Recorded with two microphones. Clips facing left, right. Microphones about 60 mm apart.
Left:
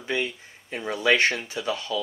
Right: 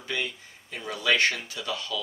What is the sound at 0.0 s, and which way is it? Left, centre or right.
Speech, left.